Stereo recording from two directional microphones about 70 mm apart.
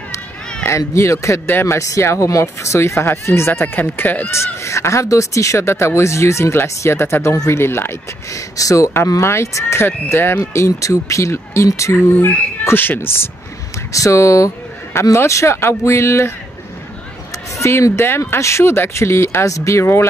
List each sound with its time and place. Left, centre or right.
0.7 s speech: left
1.5 s speech: left
1.8 s speech: left
3.6 s speech: left
4.6 s speech: left
8.3 s speech: left
10.5 s speech: left
13.9 s speech: left
17.6 s speech: left